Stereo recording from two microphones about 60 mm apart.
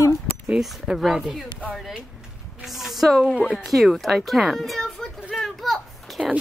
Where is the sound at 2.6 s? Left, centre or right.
Centre.